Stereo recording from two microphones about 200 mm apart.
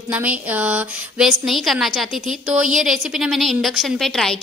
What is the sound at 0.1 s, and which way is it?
A woman's voice, 5° right (ahead or behind).